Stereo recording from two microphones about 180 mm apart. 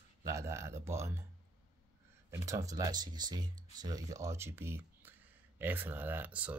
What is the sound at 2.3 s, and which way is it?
Speech, 20° right (ahead or behind).